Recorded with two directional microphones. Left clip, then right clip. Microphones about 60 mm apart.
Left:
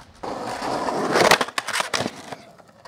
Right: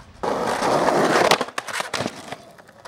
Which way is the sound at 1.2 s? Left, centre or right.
Left.